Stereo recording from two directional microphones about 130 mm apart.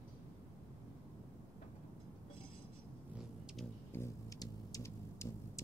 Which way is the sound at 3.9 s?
20° left (ahead or behind).